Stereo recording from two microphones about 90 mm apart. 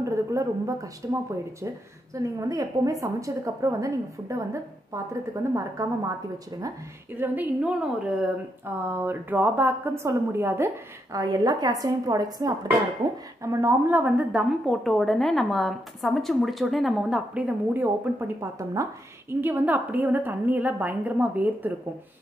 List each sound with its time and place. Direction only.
0.0 s a sound: 35° right (ahead or behind)
2.1 s a woman's voice: 40° right (ahead or behind)
7.1 s a woman's voice: 20° right (ahead or behind)
7.8 s speech: 10° right (ahead or behind)
8.8 s a woman's voice: 25° right (ahead or behind)
11.1 s a woman's voice: 40° right (ahead or behind)
13.4 s a woman's voice: 30° right (ahead or behind)
18.6 s a woman's voice: 35° right (ahead or behind)
19.4 s a woman's voice: 20° right (ahead or behind)